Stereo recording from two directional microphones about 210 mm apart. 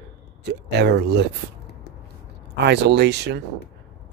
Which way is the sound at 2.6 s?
55° right (ahead or behind).